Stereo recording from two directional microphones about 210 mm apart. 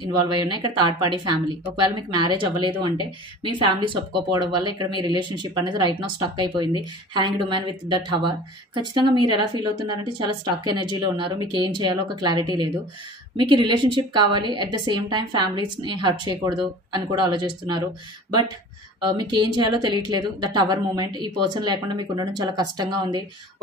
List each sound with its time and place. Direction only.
0.0 s a woman's voice: 20° right (ahead or behind)
19.0 s a woman's voice: 20° right (ahead or behind)